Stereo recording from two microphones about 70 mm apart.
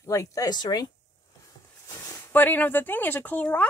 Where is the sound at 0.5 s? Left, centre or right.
Left.